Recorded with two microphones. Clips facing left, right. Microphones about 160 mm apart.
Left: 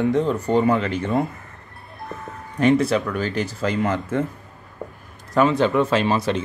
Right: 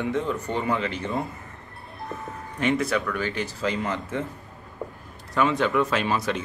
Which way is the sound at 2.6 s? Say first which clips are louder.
Left 6 dB; 35° left (ahead or behind).